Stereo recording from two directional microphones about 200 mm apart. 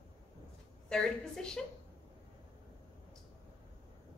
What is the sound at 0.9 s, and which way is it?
Speech, centre (ahead or behind).